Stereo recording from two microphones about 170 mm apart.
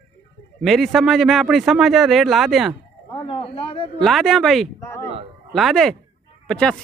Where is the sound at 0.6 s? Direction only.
Centre (ahead or behind).